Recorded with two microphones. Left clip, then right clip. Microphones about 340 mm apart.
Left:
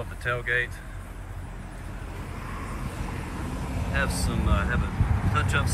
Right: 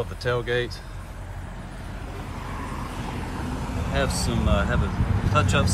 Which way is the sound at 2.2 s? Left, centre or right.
Right.